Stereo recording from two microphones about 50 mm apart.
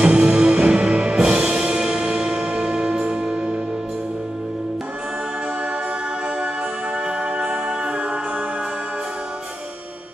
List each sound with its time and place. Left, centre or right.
0.0 s music: centre
7.1 s music: centre